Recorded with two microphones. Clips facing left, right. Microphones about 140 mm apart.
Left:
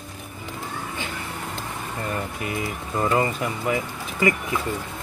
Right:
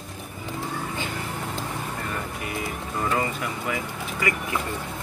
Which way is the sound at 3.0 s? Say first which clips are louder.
Left 4 dB; 25° left (ahead or behind).